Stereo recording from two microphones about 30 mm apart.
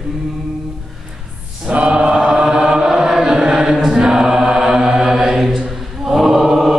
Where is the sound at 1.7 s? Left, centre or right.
Right.